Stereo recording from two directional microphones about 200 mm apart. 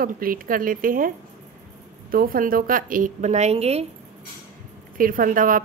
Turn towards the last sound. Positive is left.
turn(degrees=-45)  # may be behind; listen again after turning